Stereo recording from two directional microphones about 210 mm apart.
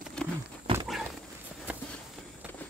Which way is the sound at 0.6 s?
25° right (ahead or behind).